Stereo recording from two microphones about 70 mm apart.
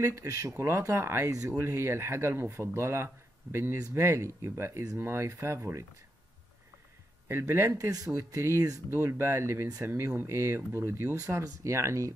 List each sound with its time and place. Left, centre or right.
0.0 s speech: right
1.6 s speech: right
7.2 s speech: right
7.7 s speech: right
8.2 s speech: right
11.1 s speech: right